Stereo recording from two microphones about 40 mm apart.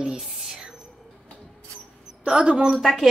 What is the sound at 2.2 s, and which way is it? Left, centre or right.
Speech, right.